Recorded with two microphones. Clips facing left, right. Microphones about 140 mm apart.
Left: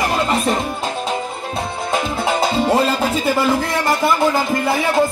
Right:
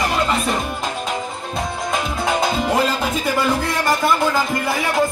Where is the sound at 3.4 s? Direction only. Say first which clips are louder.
Left 2 dB; 25° left (ahead or behind).